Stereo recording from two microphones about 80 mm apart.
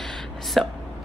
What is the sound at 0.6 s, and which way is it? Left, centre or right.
Hiccup, centre.